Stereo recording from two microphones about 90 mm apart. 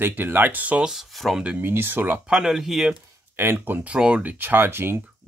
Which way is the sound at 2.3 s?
5° right (ahead or behind).